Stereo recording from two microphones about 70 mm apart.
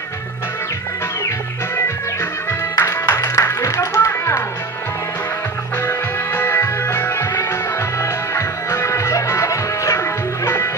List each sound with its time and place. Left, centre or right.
2.8 s music: left
5.9 s music: left